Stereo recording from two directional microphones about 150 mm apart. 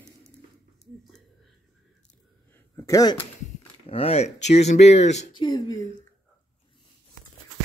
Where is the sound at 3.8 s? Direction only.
40° left (ahead or behind).